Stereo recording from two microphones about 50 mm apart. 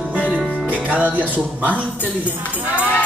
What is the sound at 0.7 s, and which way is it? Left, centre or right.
Music, right.